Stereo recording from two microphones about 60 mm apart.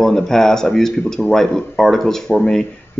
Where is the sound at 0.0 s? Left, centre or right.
Centre.